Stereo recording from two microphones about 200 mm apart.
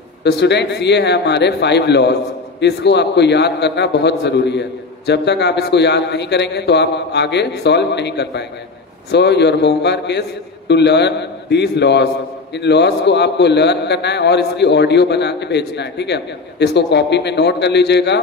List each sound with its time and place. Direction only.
0.2 s a man's voice: 60° left (ahead or behind)